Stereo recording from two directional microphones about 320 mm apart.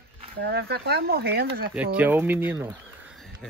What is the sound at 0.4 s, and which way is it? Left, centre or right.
Speech, right.